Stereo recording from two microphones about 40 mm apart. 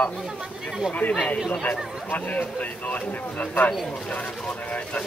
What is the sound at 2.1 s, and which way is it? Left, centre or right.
Speech, left.